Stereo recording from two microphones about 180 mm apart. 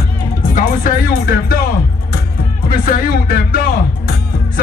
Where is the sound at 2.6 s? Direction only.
55° left (ahead or behind).